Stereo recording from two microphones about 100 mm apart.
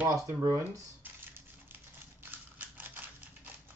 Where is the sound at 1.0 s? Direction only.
20° right (ahead or behind).